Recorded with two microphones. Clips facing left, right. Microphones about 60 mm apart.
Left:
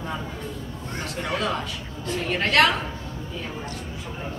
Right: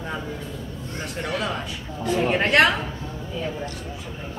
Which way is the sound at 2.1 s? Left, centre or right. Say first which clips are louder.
Right 2 dB; centre.